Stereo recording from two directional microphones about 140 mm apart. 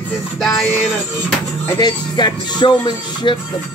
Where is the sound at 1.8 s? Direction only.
30° left (ahead or behind).